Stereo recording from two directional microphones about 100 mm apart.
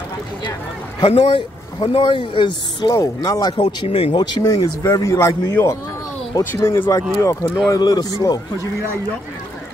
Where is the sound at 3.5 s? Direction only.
60° left (ahead or behind).